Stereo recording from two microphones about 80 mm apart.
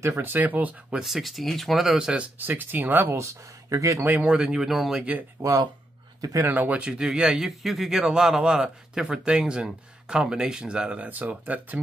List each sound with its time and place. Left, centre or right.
0.2 s speech: right
1.0 s speech: centre
2.3 s speech: right
3.2 s speech: right
4.0 s speech: right
4.3 s speech: centre
5.4 s speech: right
6.4 s speech: right